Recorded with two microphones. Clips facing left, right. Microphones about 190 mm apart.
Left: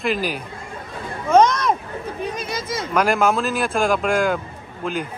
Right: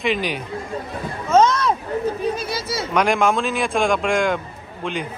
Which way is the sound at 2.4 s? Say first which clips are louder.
Right 1 dB; 50° left (ahead or behind).